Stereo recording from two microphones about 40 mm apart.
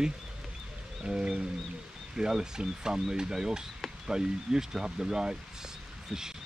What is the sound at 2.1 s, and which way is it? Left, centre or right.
Speech, centre.